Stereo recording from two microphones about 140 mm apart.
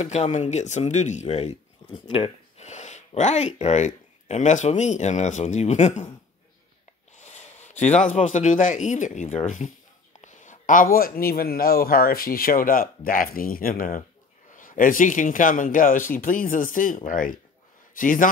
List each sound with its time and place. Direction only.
0.0 s speech: 55° left (ahead or behind)
8.2 s speech: 60° left (ahead or behind); by 14.0 s 90° left
14.5 s a man's voice: 70° left (ahead or behind)